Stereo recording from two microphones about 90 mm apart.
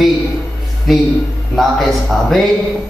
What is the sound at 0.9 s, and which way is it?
Speech, centre (ahead or behind).